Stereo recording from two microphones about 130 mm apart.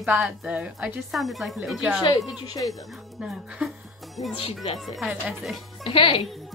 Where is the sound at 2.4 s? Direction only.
30° left (ahead or behind).